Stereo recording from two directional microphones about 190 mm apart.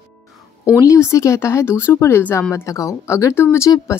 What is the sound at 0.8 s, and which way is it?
Speech, 15° left (ahead or behind).